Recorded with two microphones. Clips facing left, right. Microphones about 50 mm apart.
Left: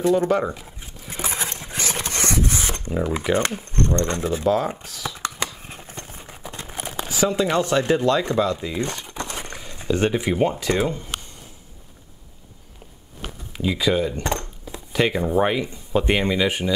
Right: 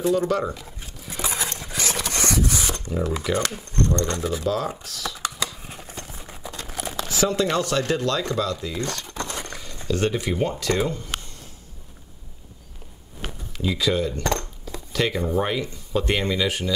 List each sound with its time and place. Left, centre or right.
0.3 s speech: centre
1.0 s patter: left
1.6 s zipper: left
4.6 s speech: centre
5.2 s a sound: left
5.9 s clip-clop: left
6.4 s crumpling: left
7.1 s speech: centre
13.6 s speech: centre